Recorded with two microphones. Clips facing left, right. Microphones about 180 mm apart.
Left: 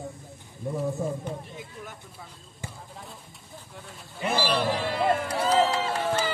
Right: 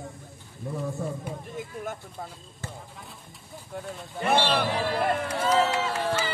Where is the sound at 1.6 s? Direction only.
50° right (ahead or behind).